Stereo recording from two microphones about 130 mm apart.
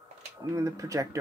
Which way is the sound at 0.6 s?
25° right (ahead or behind).